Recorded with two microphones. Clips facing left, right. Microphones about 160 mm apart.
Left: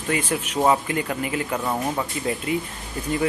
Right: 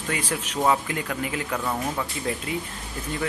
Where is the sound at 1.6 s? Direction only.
20° left (ahead or behind).